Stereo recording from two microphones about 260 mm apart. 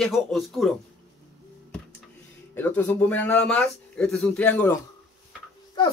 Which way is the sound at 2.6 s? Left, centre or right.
Centre.